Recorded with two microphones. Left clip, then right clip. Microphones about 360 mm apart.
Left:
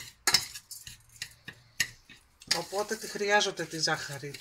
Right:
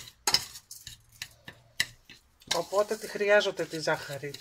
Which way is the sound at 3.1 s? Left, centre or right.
Centre.